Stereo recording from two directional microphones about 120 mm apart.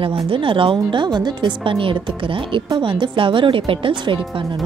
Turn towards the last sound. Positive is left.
turn(degrees=-45)  # may be behind; listen again after turning